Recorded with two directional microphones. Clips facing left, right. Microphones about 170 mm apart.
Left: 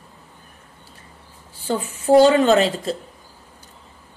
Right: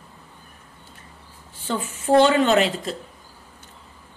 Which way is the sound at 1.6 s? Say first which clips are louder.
Left 4 dB; 35° left (ahead or behind).